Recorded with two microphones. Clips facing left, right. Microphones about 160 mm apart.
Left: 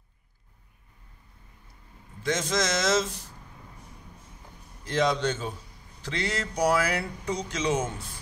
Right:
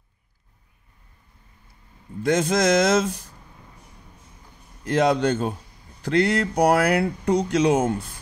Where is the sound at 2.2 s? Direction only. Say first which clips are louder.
Right 8 dB; 60° right (ahead or behind).